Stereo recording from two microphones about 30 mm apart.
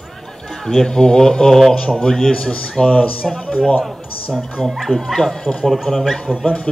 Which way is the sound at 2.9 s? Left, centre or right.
Left.